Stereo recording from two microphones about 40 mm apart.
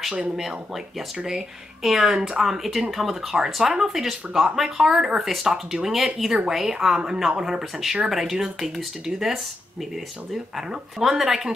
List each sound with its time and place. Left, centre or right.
1.2 s speech: centre
2.1 s speech: centre
2.4 s speech: centre
11.0 s speech: centre